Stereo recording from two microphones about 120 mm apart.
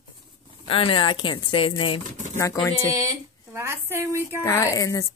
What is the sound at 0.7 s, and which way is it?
A woman's voice, 45° left (ahead or behind).